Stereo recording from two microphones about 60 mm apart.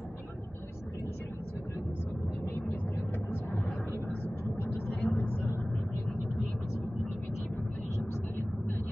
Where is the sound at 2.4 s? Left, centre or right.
Left.